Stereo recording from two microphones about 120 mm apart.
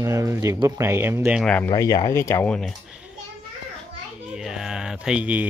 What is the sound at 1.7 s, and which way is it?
Speech, 30° left (ahead or behind).